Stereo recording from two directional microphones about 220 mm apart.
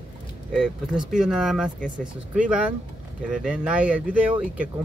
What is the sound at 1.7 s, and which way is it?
Speech, 35° right (ahead or behind).